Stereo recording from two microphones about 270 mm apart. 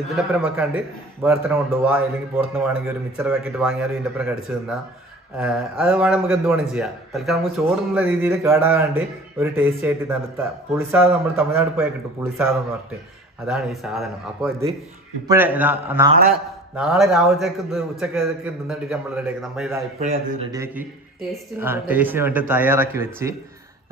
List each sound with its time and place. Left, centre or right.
0.1 s a man's voice: centre
20.0 s a man's voice: right
20.5 s a man's voice: centre